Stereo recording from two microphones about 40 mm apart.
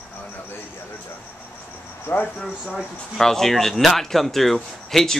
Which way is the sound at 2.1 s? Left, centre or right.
Left.